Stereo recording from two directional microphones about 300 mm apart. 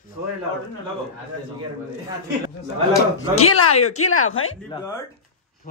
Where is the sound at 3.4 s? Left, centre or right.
Left.